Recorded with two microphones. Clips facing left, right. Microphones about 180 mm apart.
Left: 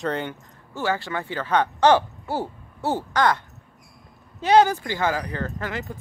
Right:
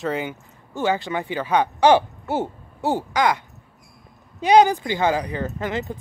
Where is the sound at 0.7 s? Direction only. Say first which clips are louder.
Right 3 dB; 20° right (ahead or behind).